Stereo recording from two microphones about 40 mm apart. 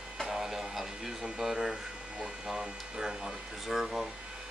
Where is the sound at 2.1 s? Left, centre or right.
Right.